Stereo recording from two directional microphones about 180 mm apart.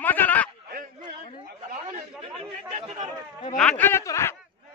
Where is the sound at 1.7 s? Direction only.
40° right (ahead or behind).